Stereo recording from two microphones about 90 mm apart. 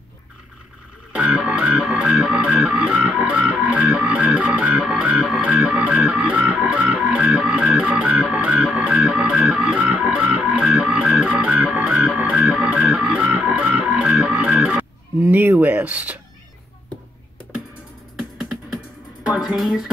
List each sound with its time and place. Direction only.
1.1 s music: 10° right (ahead or behind)
15.1 s speech: 25° right (ahead or behind)
18.4 s music: 5° right (ahead or behind)